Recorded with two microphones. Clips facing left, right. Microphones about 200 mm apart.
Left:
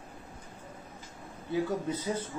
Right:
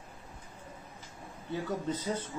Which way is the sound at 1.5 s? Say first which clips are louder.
Left 3 dB; 10° left (ahead or behind).